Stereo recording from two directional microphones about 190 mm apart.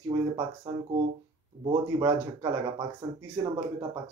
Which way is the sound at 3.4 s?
20° right (ahead or behind).